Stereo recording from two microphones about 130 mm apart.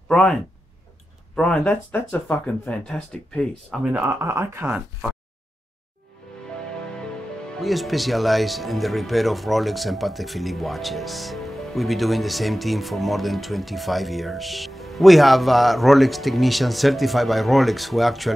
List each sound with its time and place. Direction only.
0.1 s speech: 5° left (ahead or behind)
3.8 s speech: 20° right (ahead or behind)
7.1 s speech: 5° left (ahead or behind)